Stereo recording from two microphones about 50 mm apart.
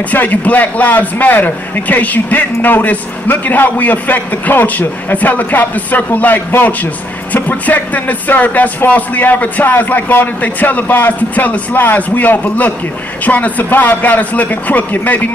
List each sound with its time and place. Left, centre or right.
0.1 s a man's voice: left